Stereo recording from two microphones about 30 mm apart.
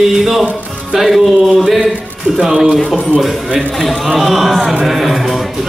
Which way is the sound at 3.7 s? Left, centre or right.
Centre.